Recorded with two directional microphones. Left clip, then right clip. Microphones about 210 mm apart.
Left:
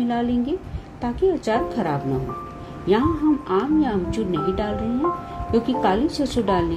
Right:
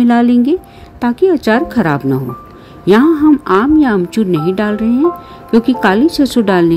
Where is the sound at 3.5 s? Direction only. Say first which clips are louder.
Right 10 dB; 50° right (ahead or behind).